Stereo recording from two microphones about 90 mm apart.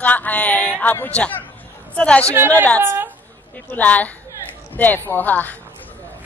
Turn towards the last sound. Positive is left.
turn(degrees=20)  # may be behind; listen again after turning